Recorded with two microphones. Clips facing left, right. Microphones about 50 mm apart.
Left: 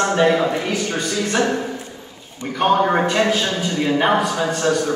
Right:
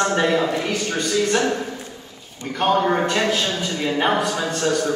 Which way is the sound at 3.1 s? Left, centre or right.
Centre.